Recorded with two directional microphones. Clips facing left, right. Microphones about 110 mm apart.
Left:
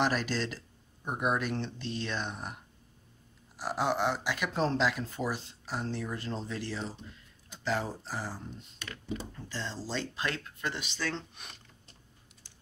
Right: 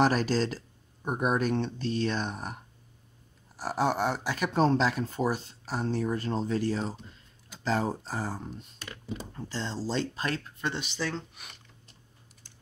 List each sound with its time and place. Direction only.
0.0 s speech: 40° right (ahead or behind)
3.5 s speech: 40° right (ahead or behind)
9.5 s speech: 30° right (ahead or behind)
10.7 s speech: 15° right (ahead or behind)